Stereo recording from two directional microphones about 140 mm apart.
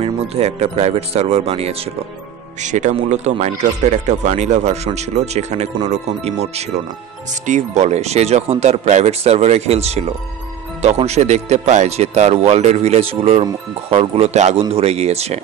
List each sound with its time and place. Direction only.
0.0 s speech: 50° right (ahead or behind)
2.6 s speech: 60° right (ahead or behind)